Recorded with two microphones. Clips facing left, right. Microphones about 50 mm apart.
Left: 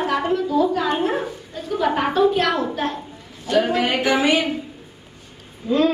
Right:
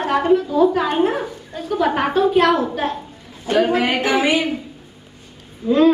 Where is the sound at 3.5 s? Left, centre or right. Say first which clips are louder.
Right 2 dB; right.